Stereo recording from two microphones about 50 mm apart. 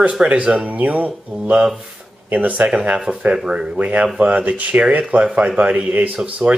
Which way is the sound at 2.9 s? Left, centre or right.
Centre.